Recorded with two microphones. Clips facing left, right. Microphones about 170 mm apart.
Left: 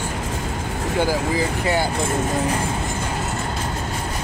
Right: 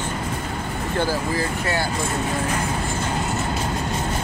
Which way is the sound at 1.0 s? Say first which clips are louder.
Left 3 dB; 15° left (ahead or behind).